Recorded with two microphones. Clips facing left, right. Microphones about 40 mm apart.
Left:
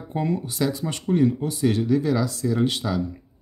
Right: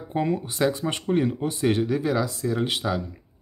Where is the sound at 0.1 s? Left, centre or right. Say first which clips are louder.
Even; right.